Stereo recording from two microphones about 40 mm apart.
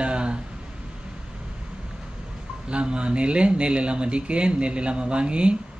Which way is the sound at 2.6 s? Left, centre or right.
Right.